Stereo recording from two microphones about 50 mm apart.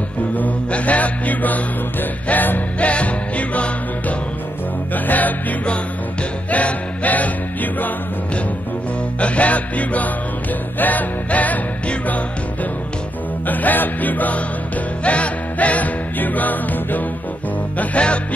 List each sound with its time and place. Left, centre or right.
0.4 s mantra: left
2.9 s music: left
4.9 s mantra: left
6.5 s music: left
9.2 s music: left
13.5 s music: left
17.7 s music: left